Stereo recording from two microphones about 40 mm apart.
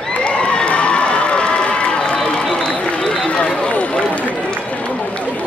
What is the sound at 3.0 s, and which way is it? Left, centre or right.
Run, left.